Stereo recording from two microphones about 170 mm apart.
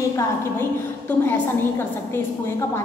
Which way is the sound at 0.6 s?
10° left (ahead or behind).